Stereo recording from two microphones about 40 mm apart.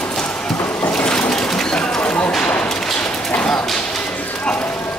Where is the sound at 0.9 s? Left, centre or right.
Left.